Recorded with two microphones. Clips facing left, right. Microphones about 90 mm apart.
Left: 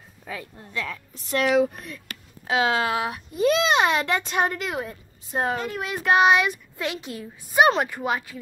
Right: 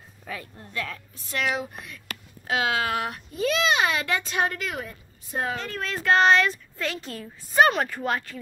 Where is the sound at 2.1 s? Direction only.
20° left (ahead or behind).